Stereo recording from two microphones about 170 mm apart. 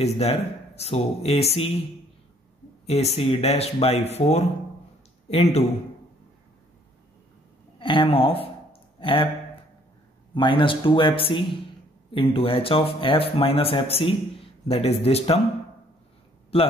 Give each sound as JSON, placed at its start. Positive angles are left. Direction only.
{"t": 0.0, "sound": "speech", "side_deg": 40}
{"t": 2.9, "sound": "speech", "side_deg": 40}
{"t": 7.8, "sound": "speech", "side_deg": 30}
{"t": 10.3, "sound": "speech", "side_deg": 30}
{"t": 16.5, "sound": "speech", "side_deg": 35}